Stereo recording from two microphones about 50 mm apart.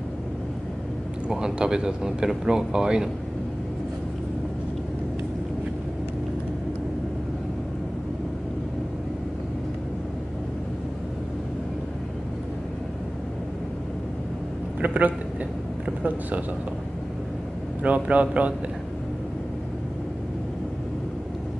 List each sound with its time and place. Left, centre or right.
1.3 s speech: centre
14.8 s a sound: right
17.8 s speech: right